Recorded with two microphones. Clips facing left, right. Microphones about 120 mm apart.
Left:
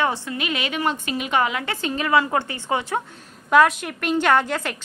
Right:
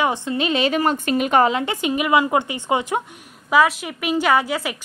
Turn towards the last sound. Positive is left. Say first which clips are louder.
# right 1 dB
turn(degrees=-5)  # may be behind; listen again after turning